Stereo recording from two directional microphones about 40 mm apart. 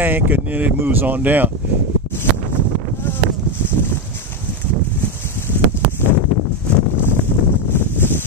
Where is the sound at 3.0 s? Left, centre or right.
Left.